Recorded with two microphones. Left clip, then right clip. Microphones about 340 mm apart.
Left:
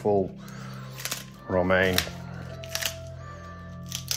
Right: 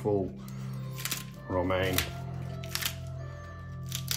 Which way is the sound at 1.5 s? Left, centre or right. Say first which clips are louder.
Left 7 dB; left.